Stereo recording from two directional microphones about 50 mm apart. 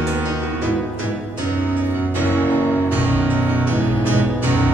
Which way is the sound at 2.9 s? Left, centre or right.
Right.